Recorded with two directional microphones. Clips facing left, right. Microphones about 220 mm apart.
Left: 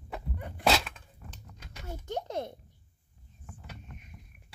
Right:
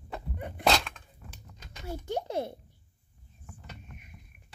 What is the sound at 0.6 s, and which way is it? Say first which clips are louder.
Dog: even; 5° left (ahead or behind).